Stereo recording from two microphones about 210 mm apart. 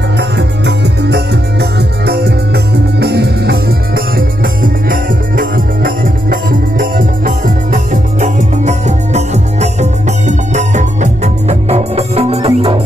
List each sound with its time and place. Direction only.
0.2 s music: 55° right (ahead or behind); by 12.7 s 30° right (ahead or behind)